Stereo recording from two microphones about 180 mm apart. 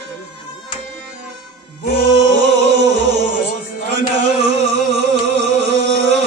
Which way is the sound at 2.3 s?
75° right (ahead or behind).